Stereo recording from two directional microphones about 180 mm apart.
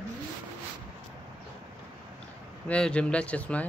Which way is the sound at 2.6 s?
5° left (ahead or behind).